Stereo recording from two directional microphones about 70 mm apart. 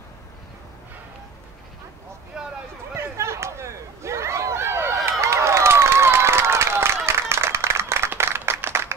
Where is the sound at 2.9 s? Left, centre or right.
Right.